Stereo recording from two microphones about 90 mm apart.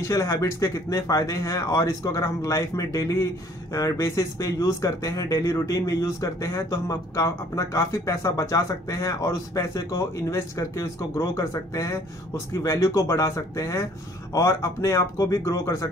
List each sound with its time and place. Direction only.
0.0 s speech: 35° left (ahead or behind)